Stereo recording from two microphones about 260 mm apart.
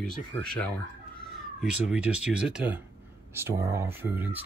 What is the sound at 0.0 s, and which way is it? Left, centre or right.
Speech, centre.